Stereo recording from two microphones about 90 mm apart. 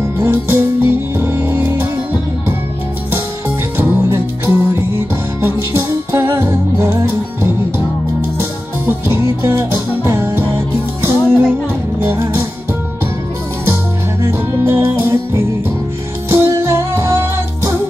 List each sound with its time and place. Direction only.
0.2 s music: 25° right (ahead or behind)
3.1 s music: 25° right (ahead or behind)
14.2 s music: 30° right (ahead or behind)